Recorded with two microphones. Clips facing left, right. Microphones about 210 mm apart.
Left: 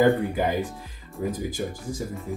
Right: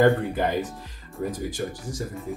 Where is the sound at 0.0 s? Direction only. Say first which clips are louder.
Even; 5° left (ahead or behind).